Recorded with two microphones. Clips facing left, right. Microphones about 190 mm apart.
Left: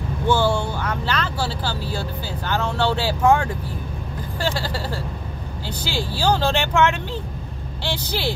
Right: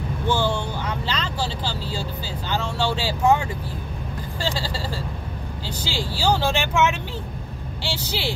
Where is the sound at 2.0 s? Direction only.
15° right (ahead or behind).